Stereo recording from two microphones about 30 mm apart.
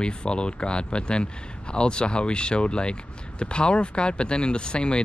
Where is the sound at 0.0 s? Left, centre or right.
Left.